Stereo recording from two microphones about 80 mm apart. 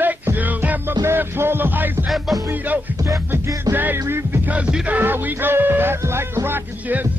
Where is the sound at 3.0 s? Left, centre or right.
Right.